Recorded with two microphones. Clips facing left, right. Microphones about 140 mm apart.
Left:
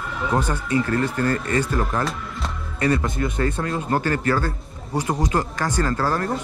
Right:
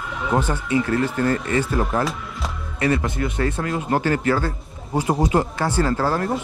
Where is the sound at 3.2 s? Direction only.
35° left (ahead or behind).